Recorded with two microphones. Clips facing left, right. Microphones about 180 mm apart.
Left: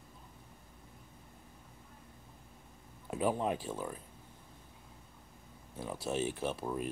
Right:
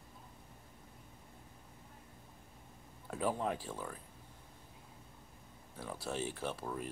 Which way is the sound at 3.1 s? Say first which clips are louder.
Left 3 dB; 15° left (ahead or behind).